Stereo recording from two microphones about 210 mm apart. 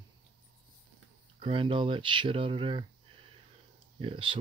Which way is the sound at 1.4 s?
25° right (ahead or behind).